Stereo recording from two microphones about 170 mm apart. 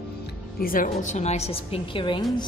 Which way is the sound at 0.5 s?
55° left (ahead or behind).